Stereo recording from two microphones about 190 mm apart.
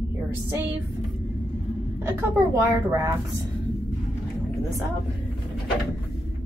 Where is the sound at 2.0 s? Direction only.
15° right (ahead or behind).